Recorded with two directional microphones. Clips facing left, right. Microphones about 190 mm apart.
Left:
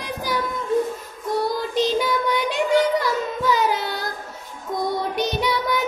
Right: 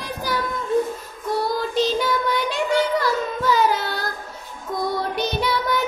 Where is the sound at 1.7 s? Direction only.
20° left (ahead or behind).